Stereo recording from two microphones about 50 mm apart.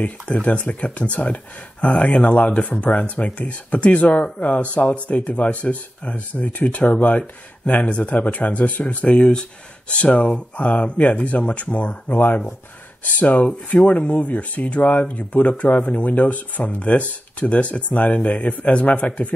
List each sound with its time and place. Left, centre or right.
0.3 s speech: left
9.0 s speech: centre